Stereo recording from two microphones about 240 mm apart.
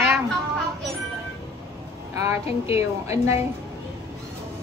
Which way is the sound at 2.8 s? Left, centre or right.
Centre.